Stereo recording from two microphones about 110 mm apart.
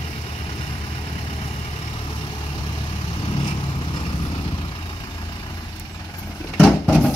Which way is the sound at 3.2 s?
50° left (ahead or behind).